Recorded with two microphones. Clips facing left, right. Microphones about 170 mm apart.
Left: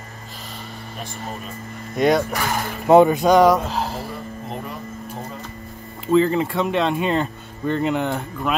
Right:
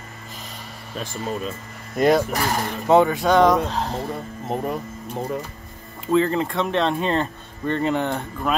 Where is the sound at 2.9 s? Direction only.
15° left (ahead or behind).